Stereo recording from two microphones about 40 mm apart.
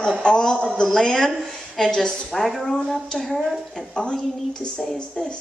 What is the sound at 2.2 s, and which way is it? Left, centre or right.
Speech, centre.